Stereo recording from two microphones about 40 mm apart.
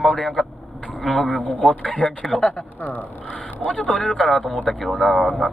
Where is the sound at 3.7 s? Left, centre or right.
Left.